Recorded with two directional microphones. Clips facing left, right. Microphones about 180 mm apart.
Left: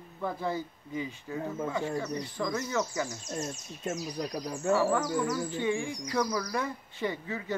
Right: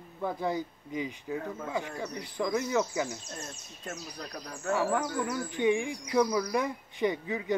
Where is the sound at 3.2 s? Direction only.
20° left (ahead or behind).